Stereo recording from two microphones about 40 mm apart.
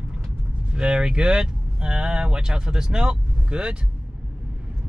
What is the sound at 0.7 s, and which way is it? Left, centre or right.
Speech, right.